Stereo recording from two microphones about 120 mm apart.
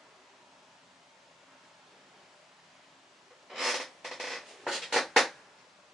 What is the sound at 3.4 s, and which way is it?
Music, centre (ahead or behind).